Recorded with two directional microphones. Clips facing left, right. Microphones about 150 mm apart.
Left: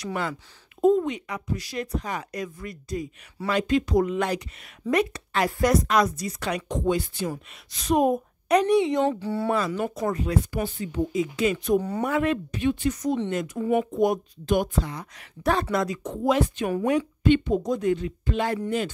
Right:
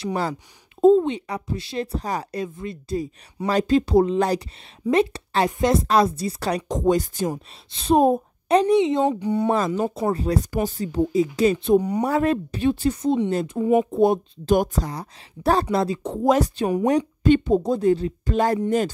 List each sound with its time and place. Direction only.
0.0 s speech: 35° right (ahead or behind)
7.7 s speech: 30° right (ahead or behind)
9.8 s speech: 30° right (ahead or behind)
12.0 s speech: 35° right (ahead or behind)